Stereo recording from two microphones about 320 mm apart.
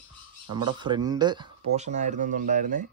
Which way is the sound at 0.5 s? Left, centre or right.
Centre.